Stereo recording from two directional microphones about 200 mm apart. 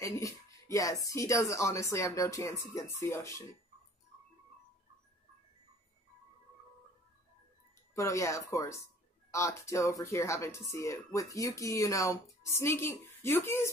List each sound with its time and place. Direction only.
0.0 s speech: 15° left (ahead or behind)
7.9 s speech: 15° left (ahead or behind)